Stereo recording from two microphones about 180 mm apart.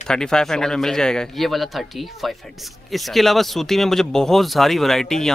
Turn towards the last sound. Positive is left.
turn(degrees=0)  # may be behind; listen again after turning